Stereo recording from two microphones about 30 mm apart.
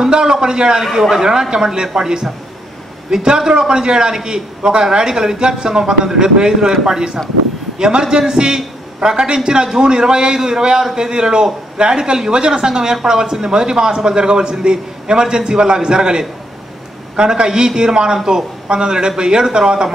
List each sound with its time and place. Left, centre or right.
0.1 s a man's voice: right
8.2 s a man's voice: right
17.5 s a man's voice: right